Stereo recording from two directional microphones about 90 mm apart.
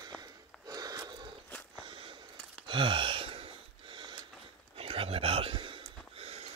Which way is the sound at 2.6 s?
65° right (ahead or behind).